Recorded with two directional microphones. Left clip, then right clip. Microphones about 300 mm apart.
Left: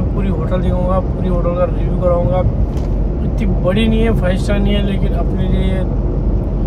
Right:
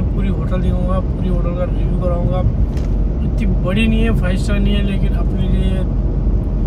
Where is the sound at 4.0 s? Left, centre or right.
Centre.